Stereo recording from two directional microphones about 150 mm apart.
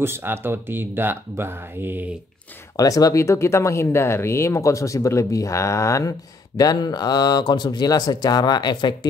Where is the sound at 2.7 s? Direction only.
25° left (ahead or behind).